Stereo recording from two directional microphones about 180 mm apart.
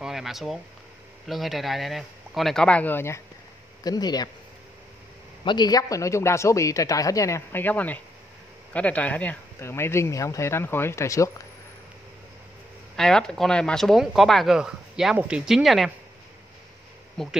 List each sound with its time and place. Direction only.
0.0 s a sound: centre (ahead or behind)
1.2 s speech: centre (ahead or behind)
3.8 s speech: 20° left (ahead or behind)
5.4 s a man's voice: 25° left (ahead or behind)
12.9 s speech: 5° left (ahead or behind)
17.2 s speech: centre (ahead or behind)